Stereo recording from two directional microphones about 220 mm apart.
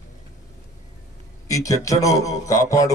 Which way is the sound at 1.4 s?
15° left (ahead or behind).